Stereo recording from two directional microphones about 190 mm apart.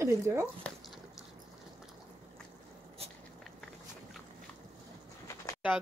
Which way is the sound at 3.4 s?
Centre (ahead or behind).